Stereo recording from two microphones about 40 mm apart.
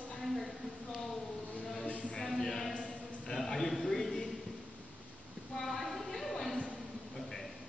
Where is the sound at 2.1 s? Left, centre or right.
Centre.